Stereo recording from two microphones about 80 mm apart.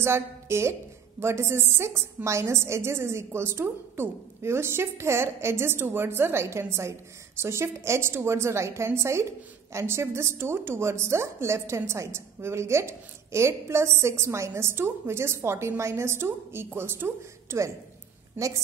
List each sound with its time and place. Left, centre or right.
0.0 s a woman's voice: right